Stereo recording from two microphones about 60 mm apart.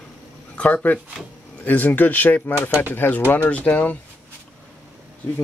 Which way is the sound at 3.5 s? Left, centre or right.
Left.